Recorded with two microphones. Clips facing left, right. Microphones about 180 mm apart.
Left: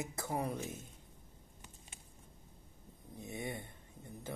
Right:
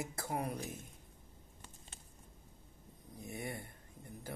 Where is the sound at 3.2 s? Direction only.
20° left (ahead or behind).